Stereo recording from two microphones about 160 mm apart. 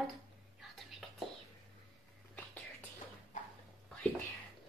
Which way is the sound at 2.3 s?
10° left (ahead or behind).